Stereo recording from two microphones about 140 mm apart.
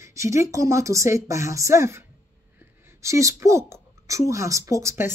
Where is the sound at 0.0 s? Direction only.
20° right (ahead or behind).